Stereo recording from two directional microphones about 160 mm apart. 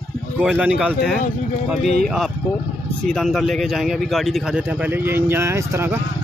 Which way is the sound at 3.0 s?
Centre (ahead or behind).